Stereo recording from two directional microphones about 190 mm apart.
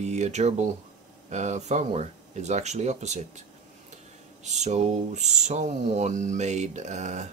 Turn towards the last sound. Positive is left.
turn(degrees=-40)  # may be behind; listen again after turning